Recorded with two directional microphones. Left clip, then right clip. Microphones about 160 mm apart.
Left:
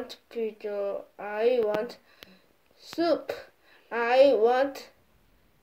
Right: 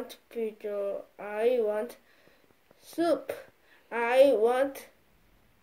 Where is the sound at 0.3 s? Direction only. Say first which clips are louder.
Left 1 dB; centre (ahead or behind).